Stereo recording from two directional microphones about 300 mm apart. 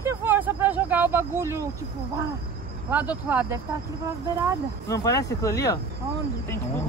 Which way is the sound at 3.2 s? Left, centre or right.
Centre.